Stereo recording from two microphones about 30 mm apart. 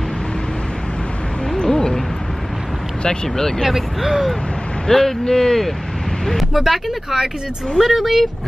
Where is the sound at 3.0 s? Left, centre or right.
Left.